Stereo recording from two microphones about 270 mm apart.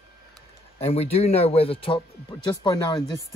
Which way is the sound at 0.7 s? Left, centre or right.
Left.